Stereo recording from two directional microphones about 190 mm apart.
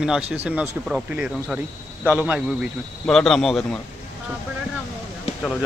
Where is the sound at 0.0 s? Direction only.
5° right (ahead or behind).